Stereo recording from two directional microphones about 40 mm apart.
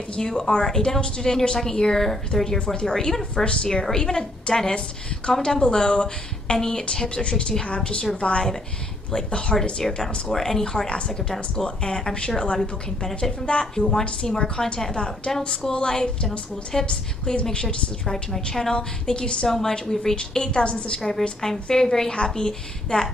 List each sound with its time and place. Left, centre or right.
0.1 s a woman's voice: centre
2.6 s a woman's voice: left
9.5 s a woman's voice: centre; by 17.7 s left
18.0 s a woman's voice: centre